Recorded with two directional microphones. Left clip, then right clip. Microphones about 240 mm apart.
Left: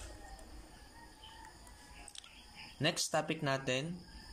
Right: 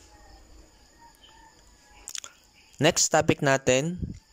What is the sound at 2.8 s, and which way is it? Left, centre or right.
Speech, right.